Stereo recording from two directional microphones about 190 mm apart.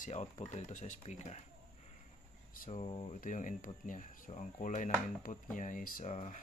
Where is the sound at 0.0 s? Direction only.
40° left (ahead or behind).